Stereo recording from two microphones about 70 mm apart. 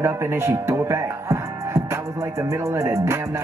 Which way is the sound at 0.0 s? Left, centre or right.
Right.